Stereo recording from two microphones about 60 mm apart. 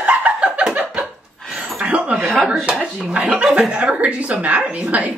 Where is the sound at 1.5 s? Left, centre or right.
Centre.